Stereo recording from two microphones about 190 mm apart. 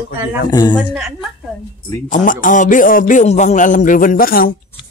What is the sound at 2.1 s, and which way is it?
Speech, 45° left (ahead or behind).